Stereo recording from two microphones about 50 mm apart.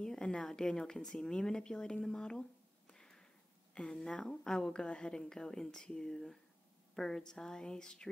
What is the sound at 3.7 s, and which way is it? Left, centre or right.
Speech, centre.